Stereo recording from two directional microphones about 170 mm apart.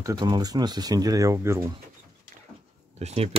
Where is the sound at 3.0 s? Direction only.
40° right (ahead or behind).